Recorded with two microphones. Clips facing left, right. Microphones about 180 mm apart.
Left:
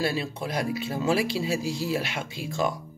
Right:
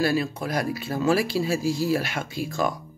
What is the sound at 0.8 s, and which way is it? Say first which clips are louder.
Speech: right 3 dB; 20° left (ahead or behind).